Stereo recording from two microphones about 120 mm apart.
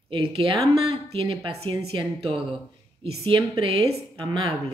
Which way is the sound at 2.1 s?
55° right (ahead or behind).